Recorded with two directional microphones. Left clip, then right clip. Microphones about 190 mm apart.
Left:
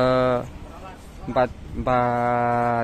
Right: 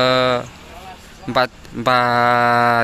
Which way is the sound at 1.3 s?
5° right (ahead or behind).